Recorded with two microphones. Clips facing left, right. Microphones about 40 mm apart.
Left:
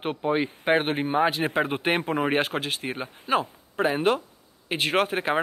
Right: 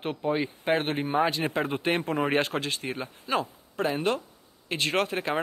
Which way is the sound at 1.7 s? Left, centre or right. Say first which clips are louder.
Left 2 dB; left.